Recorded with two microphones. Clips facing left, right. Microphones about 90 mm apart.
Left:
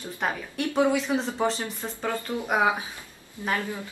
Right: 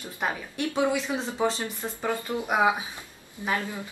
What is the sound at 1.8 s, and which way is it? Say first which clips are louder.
A woman's voice: right 3 dB; 15° right (ahead or behind).